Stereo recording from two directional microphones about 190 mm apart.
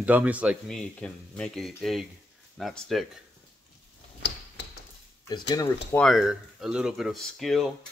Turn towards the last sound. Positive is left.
turn(degrees=0)  # may be behind; listen again after turning